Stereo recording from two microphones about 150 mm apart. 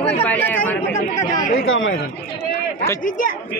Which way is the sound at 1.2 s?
60° left (ahead or behind).